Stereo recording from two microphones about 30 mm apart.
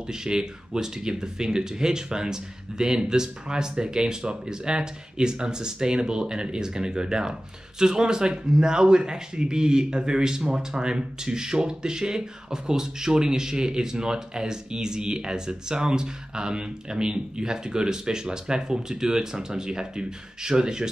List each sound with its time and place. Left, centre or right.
0.1 s speech: right